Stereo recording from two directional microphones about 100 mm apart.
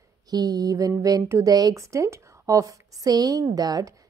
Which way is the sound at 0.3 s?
40° right (ahead or behind).